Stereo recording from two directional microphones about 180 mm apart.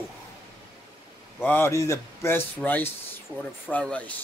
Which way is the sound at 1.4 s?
10° left (ahead or behind).